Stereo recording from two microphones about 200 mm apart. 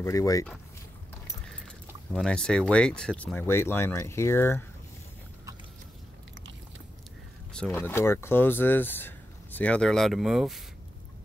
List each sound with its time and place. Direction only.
0.0 s speech: 15° left (ahead or behind)
2.1 s speech: 5° left (ahead or behind)
7.5 s speech: 5° left (ahead or behind)